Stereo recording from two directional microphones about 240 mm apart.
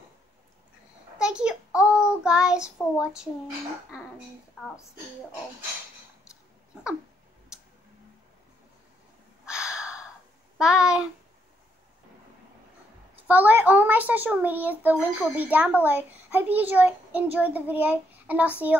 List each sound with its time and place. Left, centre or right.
1.2 s a sound: centre
1.8 s child singing: centre
4.6 s a woman's voice: centre
9.5 s gasp: centre
10.6 s a sound: centre
13.3 s a child's voice: centre